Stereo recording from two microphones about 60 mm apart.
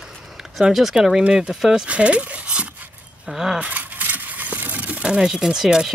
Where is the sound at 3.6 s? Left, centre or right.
Right.